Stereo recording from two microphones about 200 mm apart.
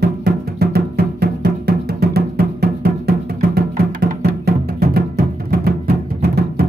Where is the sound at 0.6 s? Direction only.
50° right (ahead or behind).